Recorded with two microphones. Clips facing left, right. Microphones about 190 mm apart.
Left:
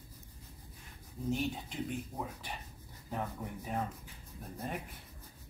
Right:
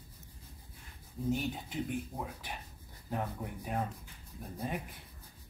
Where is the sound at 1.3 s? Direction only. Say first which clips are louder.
Right 1 dB; 5° right (ahead or behind).